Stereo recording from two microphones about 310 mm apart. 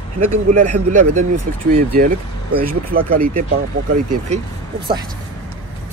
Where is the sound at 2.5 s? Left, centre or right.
Right.